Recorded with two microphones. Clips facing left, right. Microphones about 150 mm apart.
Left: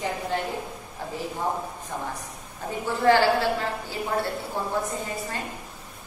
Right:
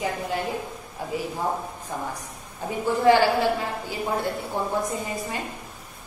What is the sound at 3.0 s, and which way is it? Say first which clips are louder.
A woman's voice: right 1 dB; 15° right (ahead or behind).